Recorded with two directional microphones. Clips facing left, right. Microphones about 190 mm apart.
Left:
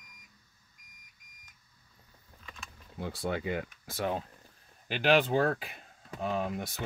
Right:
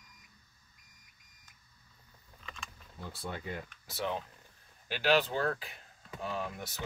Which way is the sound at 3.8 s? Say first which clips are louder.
Left 1 dB; 45° left (ahead or behind).